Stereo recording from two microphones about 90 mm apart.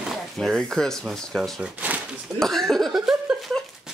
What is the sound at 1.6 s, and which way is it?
Speech, 20° right (ahead or behind).